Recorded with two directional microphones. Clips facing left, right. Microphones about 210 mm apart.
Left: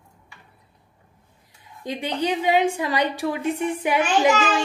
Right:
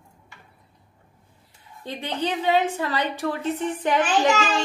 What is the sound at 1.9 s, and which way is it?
A woman's voice, 15° left (ahead or behind).